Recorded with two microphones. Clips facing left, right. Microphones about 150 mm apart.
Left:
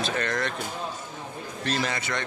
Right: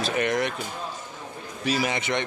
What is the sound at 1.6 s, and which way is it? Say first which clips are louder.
Speech: right 3 dB; 5° right (ahead or behind).